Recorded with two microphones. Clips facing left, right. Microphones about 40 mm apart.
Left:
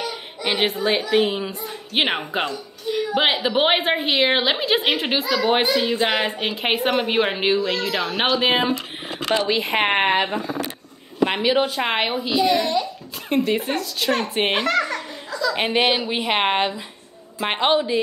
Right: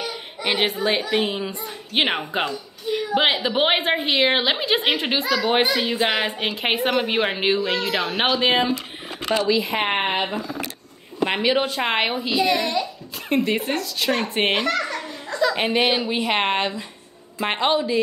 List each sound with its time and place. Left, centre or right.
0.0 s a sound: centre
1.1 s speech: centre
8.4 s speech: centre
9.5 s speech: left
11.2 s speech: centre
15.5 s speech: centre